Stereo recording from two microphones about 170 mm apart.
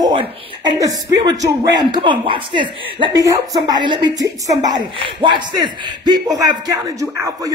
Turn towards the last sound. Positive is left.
turn(degrees=-20)  # may be behind; listen again after turning